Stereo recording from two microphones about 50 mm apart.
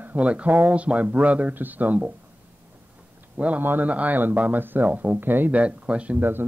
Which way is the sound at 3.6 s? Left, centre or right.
Right.